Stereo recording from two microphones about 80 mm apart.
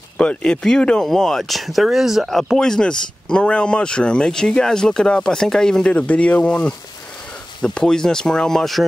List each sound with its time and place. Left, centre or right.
0.2 s speech: centre